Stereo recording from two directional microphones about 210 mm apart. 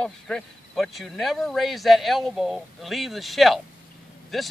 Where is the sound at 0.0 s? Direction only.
Centre (ahead or behind).